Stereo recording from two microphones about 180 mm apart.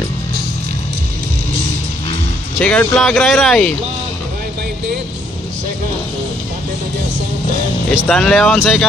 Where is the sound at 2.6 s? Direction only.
5° left (ahead or behind).